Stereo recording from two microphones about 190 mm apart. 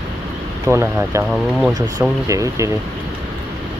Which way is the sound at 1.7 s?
20° right (ahead or behind).